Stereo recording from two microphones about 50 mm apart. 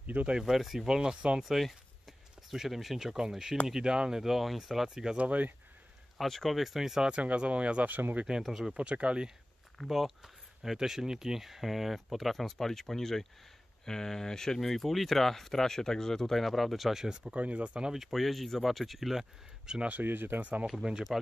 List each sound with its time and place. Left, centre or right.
0.0 s speech: right
0.3 s speech: centre
1.4 s speech: centre
5.1 s speech: right
6.1 s speech: centre
7.2 s speech: right
8.3 s speech: centre
8.7 s speech: right
9.8 s speech: centre
17.3 s speech: right
17.9 s speech: centre
20.0 s speech: right
20.6 s speech: centre